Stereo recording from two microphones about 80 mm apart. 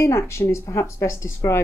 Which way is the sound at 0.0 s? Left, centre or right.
Left.